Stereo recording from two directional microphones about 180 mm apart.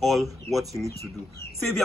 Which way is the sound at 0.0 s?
Centre (ahead or behind).